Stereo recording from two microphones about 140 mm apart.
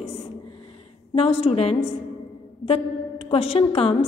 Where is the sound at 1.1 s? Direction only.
45° left (ahead or behind).